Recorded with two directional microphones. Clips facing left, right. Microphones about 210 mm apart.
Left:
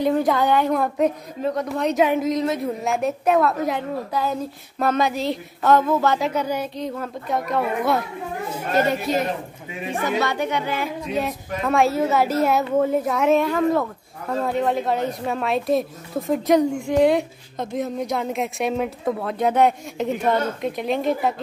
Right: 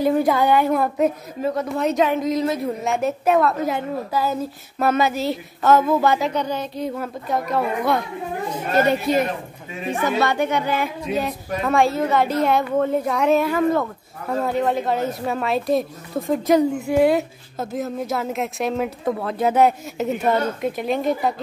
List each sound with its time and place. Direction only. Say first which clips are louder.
0.0 s a woman's voice: right 1 dB; 10° right (ahead or behind)
6.2 s speech: even; 5° left (ahead or behind)
6.8 s a woman's voice: right 2 dB; 5° right (ahead or behind)
9.1 s a woman's voice: right 2 dB; 55° right (ahead or behind)
11.1 s a woman's voice: right 1 dB; centre (ahead or behind)